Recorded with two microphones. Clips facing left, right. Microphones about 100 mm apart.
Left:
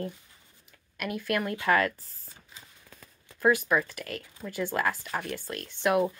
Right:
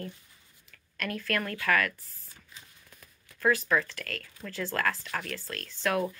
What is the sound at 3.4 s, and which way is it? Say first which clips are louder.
Speech: left 2 dB; 15° left (ahead or behind).